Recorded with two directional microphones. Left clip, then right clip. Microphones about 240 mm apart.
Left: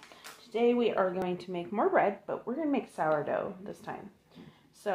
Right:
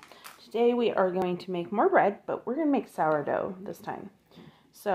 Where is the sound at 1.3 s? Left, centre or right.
Right.